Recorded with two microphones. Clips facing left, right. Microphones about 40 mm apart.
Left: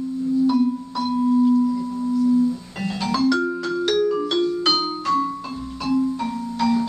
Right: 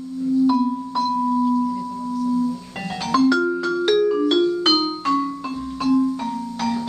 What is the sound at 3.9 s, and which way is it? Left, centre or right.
Music, centre.